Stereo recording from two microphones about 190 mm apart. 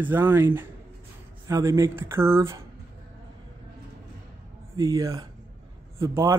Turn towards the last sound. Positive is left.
turn(degrees=-15)  # may be behind; listen again after turning